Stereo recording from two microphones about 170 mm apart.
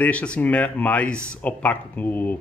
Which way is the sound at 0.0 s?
5° left (ahead or behind).